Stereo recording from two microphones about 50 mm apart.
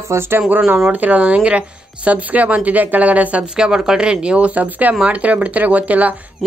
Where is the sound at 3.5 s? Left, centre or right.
Centre.